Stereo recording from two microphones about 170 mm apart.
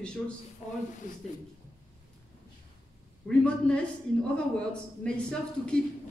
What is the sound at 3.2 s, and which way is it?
A man's voice, 5° left (ahead or behind).